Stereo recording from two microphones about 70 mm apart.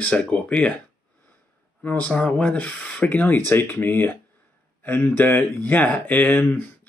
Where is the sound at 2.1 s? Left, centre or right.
Centre.